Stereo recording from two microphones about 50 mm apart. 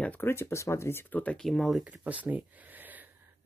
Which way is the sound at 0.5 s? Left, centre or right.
Left.